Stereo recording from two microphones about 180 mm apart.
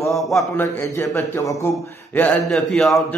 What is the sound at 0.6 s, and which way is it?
Speech, 15° left (ahead or behind).